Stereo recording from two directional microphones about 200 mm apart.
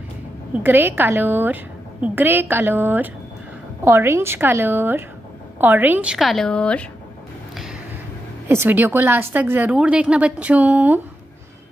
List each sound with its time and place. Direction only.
0.6 s a woman's voice: 10° right (ahead or behind); by 6.9 s 5° left (ahead or behind)
8.5 s a woman's voice: 10° right (ahead or behind)